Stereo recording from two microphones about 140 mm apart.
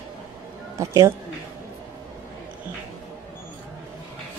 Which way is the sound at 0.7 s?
20° right (ahead or behind).